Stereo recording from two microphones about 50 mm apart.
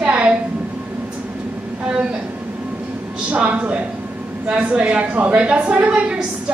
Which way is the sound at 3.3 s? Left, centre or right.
Right.